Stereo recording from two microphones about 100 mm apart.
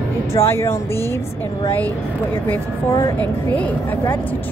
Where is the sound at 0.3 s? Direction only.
25° left (ahead or behind).